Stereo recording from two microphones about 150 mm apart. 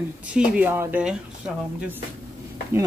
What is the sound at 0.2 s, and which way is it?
Speech, 10° right (ahead or behind).